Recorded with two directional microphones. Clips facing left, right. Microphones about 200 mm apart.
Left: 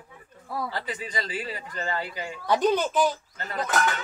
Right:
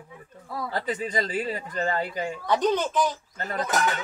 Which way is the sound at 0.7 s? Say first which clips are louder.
Right 5 dB; 45° right (ahead or behind).